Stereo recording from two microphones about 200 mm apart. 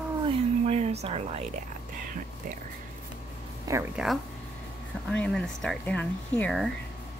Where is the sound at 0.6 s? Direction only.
30° right (ahead or behind).